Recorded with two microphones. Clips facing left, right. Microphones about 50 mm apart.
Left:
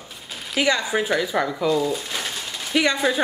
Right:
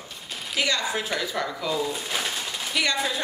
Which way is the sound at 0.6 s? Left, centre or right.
Centre.